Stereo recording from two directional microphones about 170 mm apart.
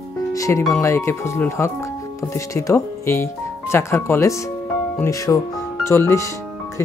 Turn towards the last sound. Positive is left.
turn(degrees=15)  # may be behind; listen again after turning